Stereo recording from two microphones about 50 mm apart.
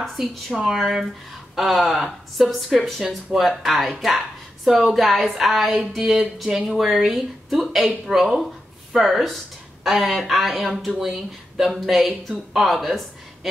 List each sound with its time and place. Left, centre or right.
0.0 s speech: centre